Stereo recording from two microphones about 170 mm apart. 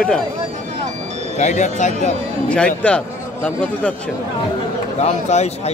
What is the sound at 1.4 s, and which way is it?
Speech, 45° left (ahead or behind).